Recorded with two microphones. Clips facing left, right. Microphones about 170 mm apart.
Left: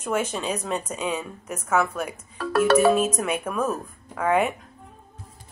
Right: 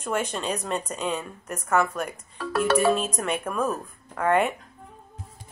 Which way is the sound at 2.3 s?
60° left (ahead or behind).